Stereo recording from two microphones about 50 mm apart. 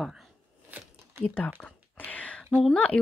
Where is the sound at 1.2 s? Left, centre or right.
Left.